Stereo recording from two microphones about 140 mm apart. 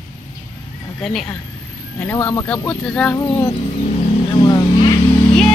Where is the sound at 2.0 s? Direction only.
15° left (ahead or behind).